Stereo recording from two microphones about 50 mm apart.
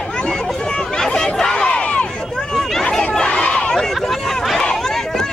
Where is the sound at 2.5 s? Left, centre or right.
Centre.